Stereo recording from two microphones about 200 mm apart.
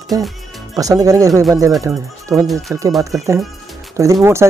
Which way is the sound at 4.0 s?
15° right (ahead or behind).